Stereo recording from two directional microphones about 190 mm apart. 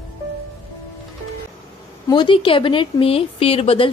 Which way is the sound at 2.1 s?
25° left (ahead or behind).